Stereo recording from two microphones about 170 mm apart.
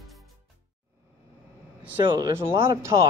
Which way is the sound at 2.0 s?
25° right (ahead or behind).